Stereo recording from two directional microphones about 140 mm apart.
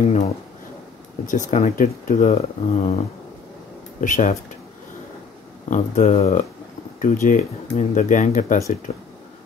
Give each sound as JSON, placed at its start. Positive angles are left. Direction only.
{"t": 0.0, "sound": "speech", "side_deg": 55}
{"t": 4.0, "sound": "speech", "side_deg": 65}
{"t": 5.7, "sound": "speech", "side_deg": 55}
{"t": 7.0, "sound": "speech", "side_deg": 65}